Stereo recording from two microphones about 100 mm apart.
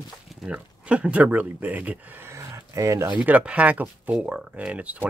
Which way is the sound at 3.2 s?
15° right (ahead or behind).